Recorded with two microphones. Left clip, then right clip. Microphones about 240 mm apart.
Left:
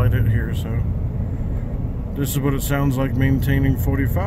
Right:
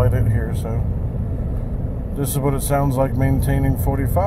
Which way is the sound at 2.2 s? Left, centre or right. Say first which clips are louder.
Right 1 dB; centre.